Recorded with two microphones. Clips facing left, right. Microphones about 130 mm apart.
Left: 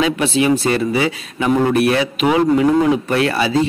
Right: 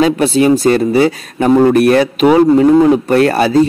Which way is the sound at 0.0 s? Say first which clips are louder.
Right 6 dB; 40° right (ahead or behind).